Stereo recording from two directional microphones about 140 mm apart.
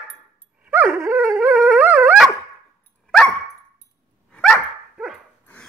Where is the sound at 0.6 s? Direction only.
15° right (ahead or behind).